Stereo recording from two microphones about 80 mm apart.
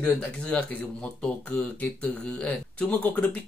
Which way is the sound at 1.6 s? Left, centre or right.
Left.